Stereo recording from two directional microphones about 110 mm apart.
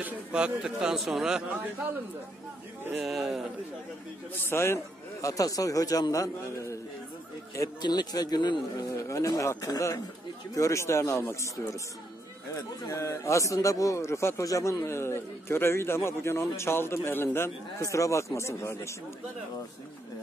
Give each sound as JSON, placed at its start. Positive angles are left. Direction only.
{"t": 0.0, "sound": "a man's voice", "side_deg": -10}
{"t": 2.9, "sound": "speech", "side_deg": -5}
{"t": 4.4, "sound": "a man's voice", "side_deg": 20}
{"t": 5.2, "sound": "a man's voice", "side_deg": 30}
{"t": 7.8, "sound": "a man's voice", "side_deg": 40}
{"t": 8.8, "sound": "a man's voice", "side_deg": 30}
{"t": 12.8, "sound": "a man's voice", "side_deg": 25}